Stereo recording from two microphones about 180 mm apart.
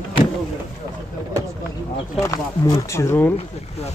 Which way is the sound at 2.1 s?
15° left (ahead or behind).